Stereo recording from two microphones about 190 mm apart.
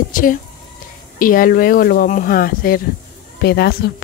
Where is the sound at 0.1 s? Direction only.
45° left (ahead or behind).